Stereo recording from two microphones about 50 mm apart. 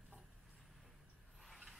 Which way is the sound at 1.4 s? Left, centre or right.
Centre.